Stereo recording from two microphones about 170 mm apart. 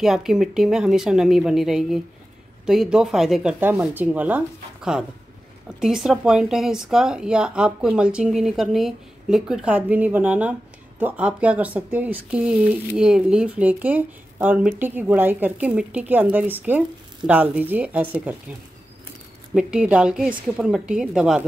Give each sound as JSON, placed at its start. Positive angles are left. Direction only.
{"t": 0.0, "sound": "speech", "side_deg": 0}
{"t": 5.8, "sound": "speech", "side_deg": -5}
{"t": 19.5, "sound": "speech", "side_deg": -5}